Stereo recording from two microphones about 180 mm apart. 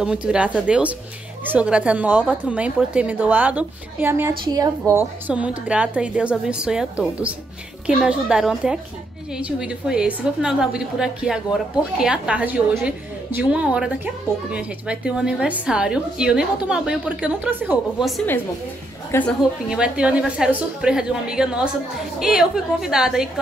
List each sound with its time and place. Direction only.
0.0 s a woman's voice: 5° right (ahead or behind); by 4.6 s 20° right (ahead or behind)
4.9 s a woman's voice: 10° right (ahead or behind)
19.1 s a woman's voice: 15° left (ahead or behind)
19.7 s a woman's voice: 5° right (ahead or behind)